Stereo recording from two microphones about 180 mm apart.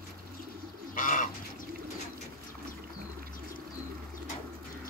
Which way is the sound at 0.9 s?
50° left (ahead or behind).